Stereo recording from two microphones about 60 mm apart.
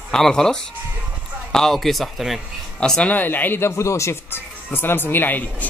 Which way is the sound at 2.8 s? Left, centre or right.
Centre.